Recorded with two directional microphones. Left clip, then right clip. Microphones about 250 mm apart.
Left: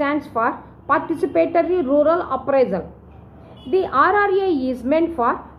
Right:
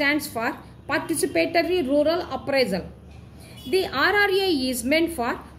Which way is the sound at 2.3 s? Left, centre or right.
Right.